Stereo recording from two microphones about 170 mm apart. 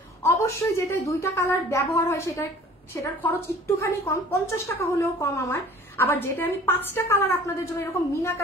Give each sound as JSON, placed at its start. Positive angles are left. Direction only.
{"t": 0.2, "sound": "a woman's voice", "side_deg": 15}